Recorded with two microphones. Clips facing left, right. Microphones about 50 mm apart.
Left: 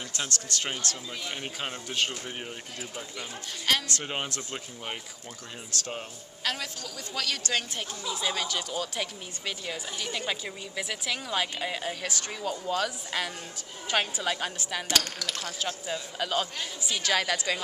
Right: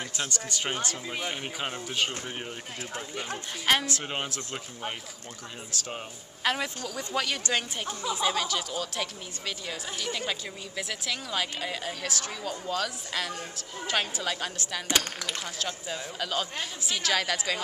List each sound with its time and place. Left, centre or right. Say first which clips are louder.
0.3 s speech: right 1 dB; centre
3.8 s speech: right 1 dB; centre
6.4 s speech: right 4 dB; centre
6.8 s speech: right 5 dB; right
7.2 s speech: right 2 dB; centre
14.9 s speech: right 1 dB; right
15.6 s speech: left 2 dB; centre